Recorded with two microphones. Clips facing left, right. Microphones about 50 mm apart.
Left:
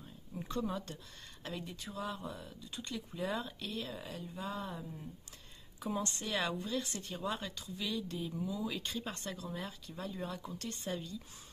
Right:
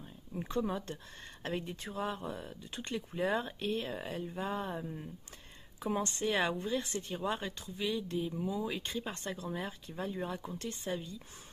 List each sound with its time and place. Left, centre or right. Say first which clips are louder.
0.4 s a woman's voice: right 3 dB; right
1.9 s a woman's voice: right 3 dB; right; by 11.1 s centre